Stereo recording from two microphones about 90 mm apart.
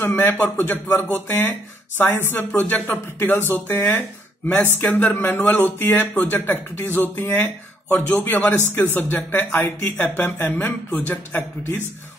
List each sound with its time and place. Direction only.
0.0 s speech: 20° left (ahead or behind)